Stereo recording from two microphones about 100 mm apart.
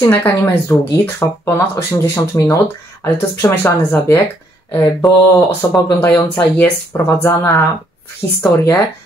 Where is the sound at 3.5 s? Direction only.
20° left (ahead or behind).